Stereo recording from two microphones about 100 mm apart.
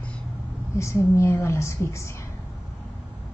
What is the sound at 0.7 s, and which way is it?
A woman's voice, 30° left (ahead or behind).